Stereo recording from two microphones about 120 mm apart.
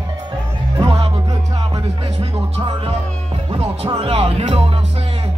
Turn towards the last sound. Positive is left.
turn(degrees=-50)  # may be behind; listen again after turning